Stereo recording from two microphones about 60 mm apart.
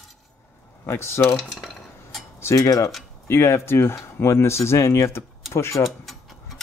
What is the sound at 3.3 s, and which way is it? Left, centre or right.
Speech, left.